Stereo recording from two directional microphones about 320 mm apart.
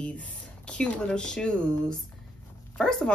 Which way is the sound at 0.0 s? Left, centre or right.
Centre.